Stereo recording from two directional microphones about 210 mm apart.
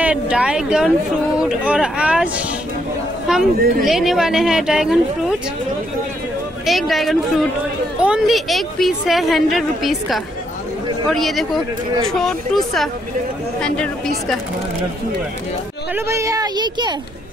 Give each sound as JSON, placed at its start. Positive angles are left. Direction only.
{"t": 0.0, "sound": "a woman's voice", "side_deg": -5}
{"t": 3.5, "sound": "speech", "side_deg": -45}
{"t": 3.8, "sound": "a woman's voice", "side_deg": 0}
{"t": 6.6, "sound": "a woman's voice", "side_deg": 0}
{"t": 15.9, "sound": "a woman's voice", "side_deg": -15}